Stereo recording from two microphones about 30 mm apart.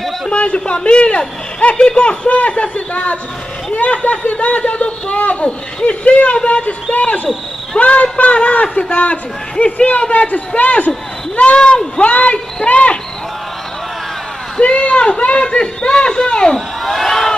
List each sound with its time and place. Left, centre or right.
0.3 s speech: left
2.2 s a man's voice: left
11.5 s speech: left
12.0 s a man's voice: left
14.6 s speech: left
16.5 s speech: centre